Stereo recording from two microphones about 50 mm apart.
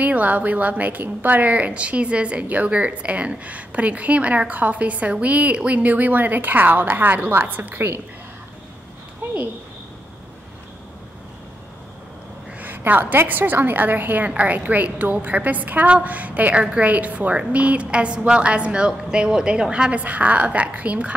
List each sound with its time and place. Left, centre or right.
0.0 s a woman's voice: right
12.5 s a sound: right
13.3 s a woman's voice: right